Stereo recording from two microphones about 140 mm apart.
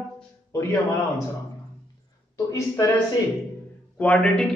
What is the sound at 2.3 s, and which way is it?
Speech, 20° left (ahead or behind).